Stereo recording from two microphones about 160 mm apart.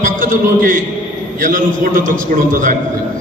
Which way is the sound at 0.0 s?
60° right (ahead or behind).